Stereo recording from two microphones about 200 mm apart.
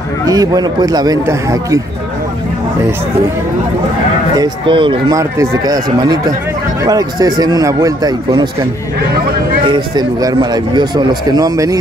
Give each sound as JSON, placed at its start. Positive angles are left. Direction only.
{"t": 0.2, "sound": "speech", "side_deg": -20}
{"t": 4.4, "sound": "speech", "side_deg": -25}
{"t": 9.9, "sound": "speech", "side_deg": -20}